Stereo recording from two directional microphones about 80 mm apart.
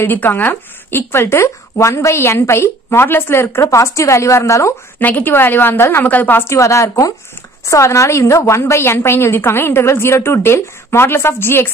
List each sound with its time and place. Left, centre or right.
0.0 s speech: left
4.9 s a woman's voice: left
6.5 s speech: left